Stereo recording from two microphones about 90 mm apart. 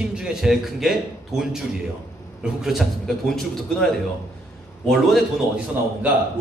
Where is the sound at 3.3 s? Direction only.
5° left (ahead or behind).